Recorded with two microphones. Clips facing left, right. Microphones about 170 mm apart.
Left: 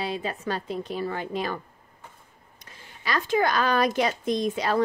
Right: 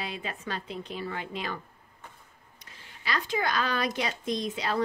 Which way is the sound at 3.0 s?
45° left (ahead or behind).